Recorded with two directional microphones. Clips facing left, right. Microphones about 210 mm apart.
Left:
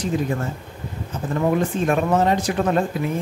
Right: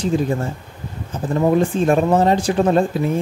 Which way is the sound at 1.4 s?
30° right (ahead or behind).